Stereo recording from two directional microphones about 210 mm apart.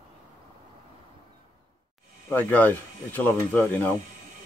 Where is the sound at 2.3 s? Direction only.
5° left (ahead or behind).